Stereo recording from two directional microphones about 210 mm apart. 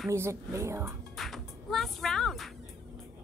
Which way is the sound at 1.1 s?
Centre (ahead or behind).